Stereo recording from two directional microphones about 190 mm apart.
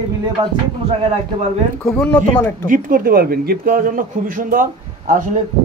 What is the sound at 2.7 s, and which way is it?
A man's voice, 50° right (ahead or behind).